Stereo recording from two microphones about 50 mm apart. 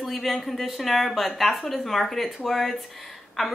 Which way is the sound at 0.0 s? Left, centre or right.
Centre.